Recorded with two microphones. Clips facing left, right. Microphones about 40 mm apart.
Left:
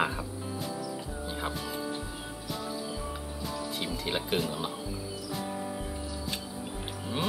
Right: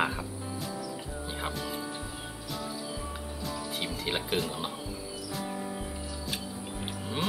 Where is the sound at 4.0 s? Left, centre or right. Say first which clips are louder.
Even; centre.